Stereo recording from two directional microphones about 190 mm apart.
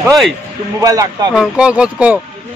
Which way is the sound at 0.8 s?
20° right (ahead or behind).